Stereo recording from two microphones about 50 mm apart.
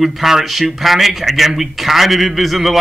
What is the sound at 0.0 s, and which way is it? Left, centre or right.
A man's voice, centre.